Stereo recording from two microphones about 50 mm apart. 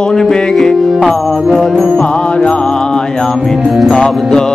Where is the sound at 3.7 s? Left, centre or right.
Centre.